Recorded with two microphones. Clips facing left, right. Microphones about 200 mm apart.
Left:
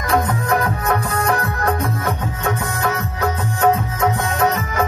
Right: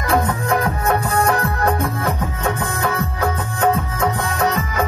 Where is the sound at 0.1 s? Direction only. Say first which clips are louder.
Even; 30° right (ahead or behind).